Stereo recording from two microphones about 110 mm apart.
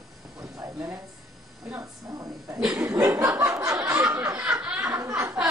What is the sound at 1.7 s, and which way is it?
Speech, 30° right (ahead or behind).